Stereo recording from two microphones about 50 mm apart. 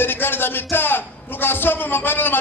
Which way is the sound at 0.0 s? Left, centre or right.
Left.